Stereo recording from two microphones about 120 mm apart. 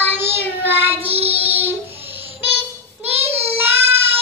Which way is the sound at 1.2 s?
60° right (ahead or behind).